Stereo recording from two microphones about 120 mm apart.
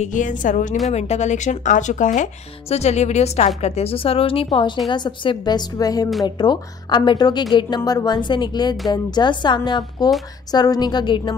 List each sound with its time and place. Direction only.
0.0 s a woman's voice: 90° left
0.8 s speech: 70° left (ahead or behind); by 2.2 s 90° left
2.7 s a woman's voice: 65° left (ahead or behind); by 11.3 s 40° left (ahead or behind)